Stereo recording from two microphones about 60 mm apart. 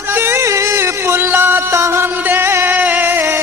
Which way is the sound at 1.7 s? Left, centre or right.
Right.